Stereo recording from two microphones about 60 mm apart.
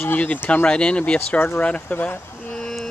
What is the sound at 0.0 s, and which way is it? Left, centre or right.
Speech, left.